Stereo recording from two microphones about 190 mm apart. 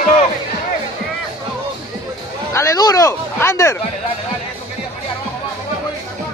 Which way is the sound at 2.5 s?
15° left (ahead or behind).